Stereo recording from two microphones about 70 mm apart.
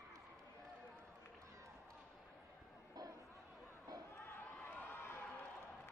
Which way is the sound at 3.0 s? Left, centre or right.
Right.